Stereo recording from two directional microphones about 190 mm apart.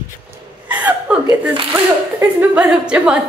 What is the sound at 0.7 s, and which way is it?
Chuckle, 10° right (ahead or behind).